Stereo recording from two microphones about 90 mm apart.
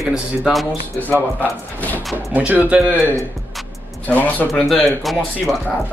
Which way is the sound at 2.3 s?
15° right (ahead or behind).